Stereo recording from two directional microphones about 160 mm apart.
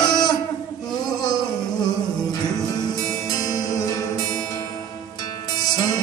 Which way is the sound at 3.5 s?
20° left (ahead or behind).